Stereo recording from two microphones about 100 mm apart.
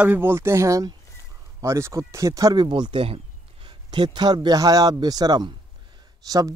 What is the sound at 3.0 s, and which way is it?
A man's voice, 65° right (ahead or behind).